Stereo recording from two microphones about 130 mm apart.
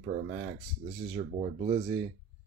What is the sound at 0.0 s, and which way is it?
Speech, 80° right.